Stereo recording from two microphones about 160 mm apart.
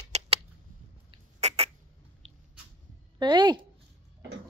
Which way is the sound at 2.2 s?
40° right (ahead or behind).